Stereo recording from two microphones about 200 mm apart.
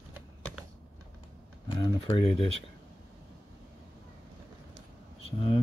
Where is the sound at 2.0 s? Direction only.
25° left (ahead or behind).